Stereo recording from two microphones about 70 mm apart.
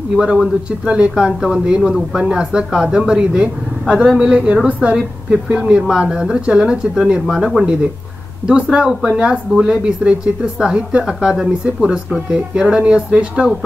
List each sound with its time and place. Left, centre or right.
0.7 s a woman's voice: centre
4.9 s speech: centre